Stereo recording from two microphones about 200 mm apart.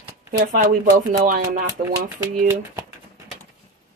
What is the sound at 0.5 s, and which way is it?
A woman's voice, 40° right (ahead or behind).